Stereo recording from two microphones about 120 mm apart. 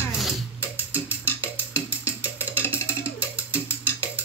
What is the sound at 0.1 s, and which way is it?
Music, centre (ahead or behind).